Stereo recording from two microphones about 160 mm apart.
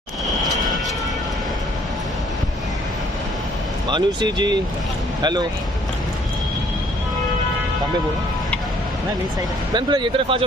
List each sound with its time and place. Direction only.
3.9 s speech: 30° right (ahead or behind)
9.8 s speech: 25° right (ahead or behind)